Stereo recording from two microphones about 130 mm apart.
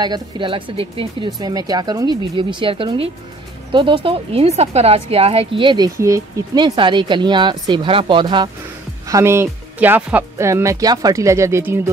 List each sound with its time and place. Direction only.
0.0 s speech: 35° right (ahead or behind)
1.4 s speech: 30° right (ahead or behind)
5.9 s speech: 25° right (ahead or behind)
6.5 s speech: 35° right (ahead or behind)
9.0 s speech: 20° right (ahead or behind)